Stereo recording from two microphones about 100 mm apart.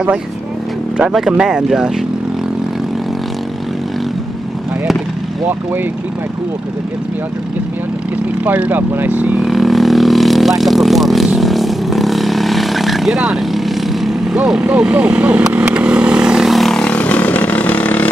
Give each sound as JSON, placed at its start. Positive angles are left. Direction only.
{"t": 0.9, "sound": "speech", "side_deg": -5}
{"t": 8.5, "sound": "speech", "side_deg": -15}
{"t": 9.4, "sound": "vehicle", "side_deg": 0}